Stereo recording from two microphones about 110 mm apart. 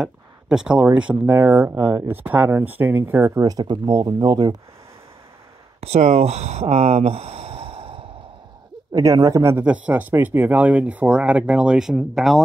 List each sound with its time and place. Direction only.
0.0 s a sound: 5° right (ahead or behind)
0.9 s speech: 10° right (ahead or behind)
3.4 s speech: 40° right (ahead or behind)
5.8 s speech: 80° right; by 8.1 s 55° right (ahead or behind)
8.9 s speech: 35° right (ahead or behind)
9.7 s speech: 15° right (ahead or behind)